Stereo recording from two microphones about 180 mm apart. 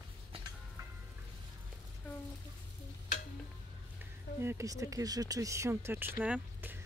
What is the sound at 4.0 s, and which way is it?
Speech, 15° right (ahead or behind).